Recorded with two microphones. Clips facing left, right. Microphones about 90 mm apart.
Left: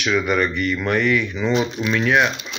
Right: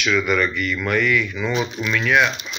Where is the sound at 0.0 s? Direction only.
30° left (ahead or behind).